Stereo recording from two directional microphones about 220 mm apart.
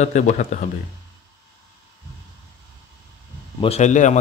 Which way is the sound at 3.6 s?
30° left (ahead or behind).